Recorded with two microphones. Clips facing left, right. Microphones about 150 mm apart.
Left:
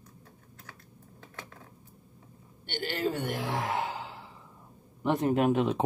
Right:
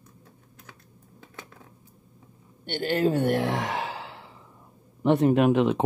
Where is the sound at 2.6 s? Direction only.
50° right (ahead or behind); by 4.3 s 80° right.